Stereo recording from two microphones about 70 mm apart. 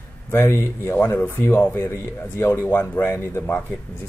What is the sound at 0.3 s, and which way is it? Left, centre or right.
Speech, left.